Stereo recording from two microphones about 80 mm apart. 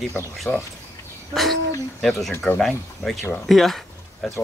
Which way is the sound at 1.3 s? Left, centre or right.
Centre.